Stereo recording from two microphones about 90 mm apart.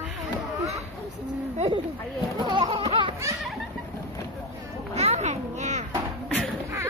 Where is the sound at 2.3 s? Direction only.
60° right (ahead or behind).